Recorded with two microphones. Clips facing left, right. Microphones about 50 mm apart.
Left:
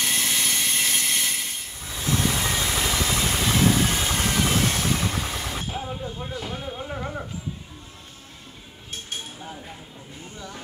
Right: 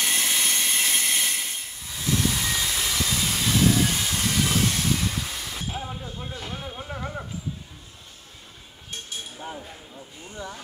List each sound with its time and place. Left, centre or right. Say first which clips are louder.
0.0 s train: even; centre
2.0 s vehicle: left 1 dB; left
4.0 s vehicle: left 2 dB; left
5.7 s a sound: left 2 dB; centre